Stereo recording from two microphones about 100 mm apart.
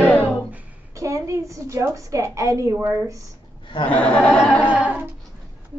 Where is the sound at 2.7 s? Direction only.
20° right (ahead or behind).